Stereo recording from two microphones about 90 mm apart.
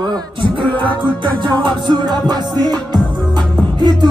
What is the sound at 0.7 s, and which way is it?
Music, 65° right (ahead or behind).